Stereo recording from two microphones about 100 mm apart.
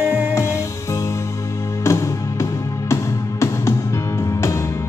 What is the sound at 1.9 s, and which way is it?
Music, 30° left (ahead or behind).